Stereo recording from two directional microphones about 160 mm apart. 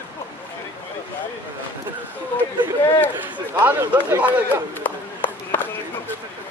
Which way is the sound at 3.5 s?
15° right (ahead or behind).